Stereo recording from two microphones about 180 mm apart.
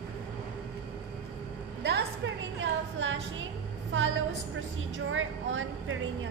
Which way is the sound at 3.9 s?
90° right.